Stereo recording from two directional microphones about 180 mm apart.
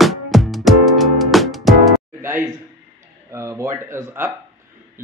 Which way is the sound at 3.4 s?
15° right (ahead or behind).